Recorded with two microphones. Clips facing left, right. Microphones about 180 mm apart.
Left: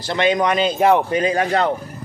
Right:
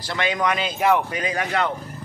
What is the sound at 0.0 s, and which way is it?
Speech, 25° left (ahead or behind).